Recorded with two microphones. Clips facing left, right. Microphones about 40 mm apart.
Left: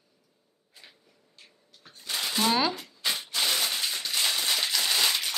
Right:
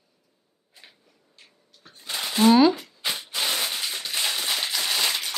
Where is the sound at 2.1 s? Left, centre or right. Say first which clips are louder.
Right 6 dB; centre.